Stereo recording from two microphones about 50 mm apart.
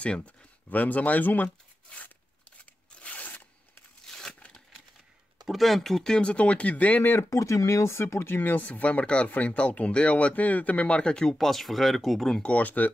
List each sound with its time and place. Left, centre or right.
0.0 s speech: left
3.0 s a sound: left
4.0 s a sound: centre
5.4 s speech: centre; by 7.1 s left
7.2 s speech: left
11.0 s speech: centre
11.3 s speech: centre
12.5 s speech: left